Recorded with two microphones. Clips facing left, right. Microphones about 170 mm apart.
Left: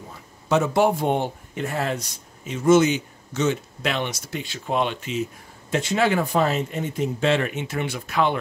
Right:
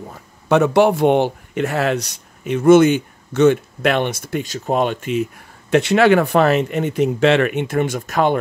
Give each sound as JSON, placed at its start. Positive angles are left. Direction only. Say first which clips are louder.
{"t": 0.5, "sound": "speech", "louder": "right 6 dB", "side_deg": -70}